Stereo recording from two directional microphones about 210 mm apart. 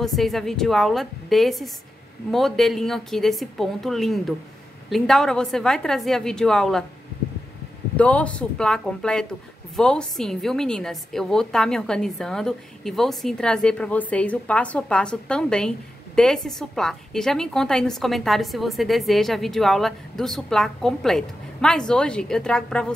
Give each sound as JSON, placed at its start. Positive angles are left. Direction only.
{"t": 0.0, "sound": "a woman's voice", "side_deg": 0}
{"t": 8.0, "sound": "a woman's voice", "side_deg": 5}